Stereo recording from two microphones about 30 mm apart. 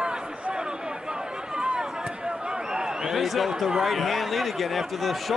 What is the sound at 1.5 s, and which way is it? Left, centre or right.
Run, right.